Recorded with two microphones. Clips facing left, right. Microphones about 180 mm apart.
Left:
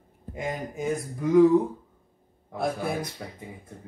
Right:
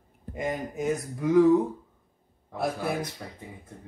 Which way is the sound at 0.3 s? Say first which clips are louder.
Right 1 dB; centre (ahead or behind).